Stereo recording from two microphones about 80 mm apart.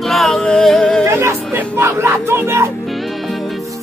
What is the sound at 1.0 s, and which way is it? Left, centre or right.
Speech, right.